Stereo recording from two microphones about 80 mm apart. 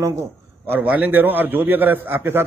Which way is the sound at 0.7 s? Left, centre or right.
Right.